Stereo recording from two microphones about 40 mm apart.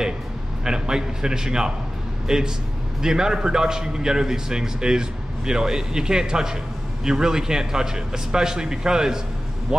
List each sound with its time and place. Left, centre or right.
0.7 s a man's voice: centre